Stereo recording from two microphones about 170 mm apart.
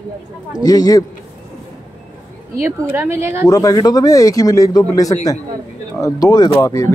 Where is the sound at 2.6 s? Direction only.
15° right (ahead or behind).